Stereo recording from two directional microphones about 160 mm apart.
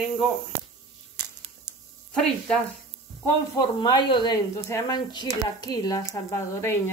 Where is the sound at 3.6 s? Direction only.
25° left (ahead or behind).